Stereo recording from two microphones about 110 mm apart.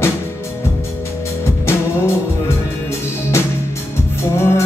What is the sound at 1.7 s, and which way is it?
Music, 25° left (ahead or behind).